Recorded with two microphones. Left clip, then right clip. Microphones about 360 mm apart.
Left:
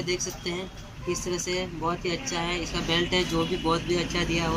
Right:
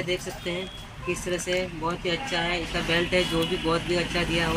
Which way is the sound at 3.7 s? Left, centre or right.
Centre.